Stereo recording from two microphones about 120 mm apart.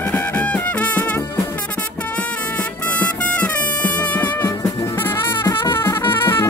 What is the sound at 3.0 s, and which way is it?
Music, 10° left (ahead or behind).